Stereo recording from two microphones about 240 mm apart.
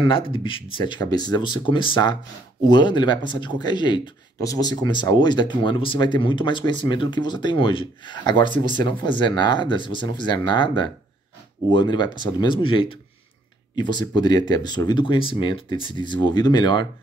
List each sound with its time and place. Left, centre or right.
0.1 s speech: left